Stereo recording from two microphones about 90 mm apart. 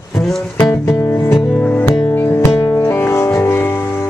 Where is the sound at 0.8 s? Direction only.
30° left (ahead or behind).